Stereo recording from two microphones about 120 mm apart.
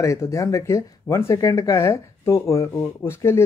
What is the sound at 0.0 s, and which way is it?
Speech, 25° left (ahead or behind).